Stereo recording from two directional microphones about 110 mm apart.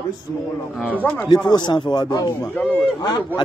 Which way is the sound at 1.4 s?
40° left (ahead or behind).